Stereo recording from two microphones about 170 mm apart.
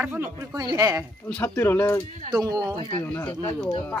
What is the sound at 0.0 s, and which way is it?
Speech, 10° right (ahead or behind).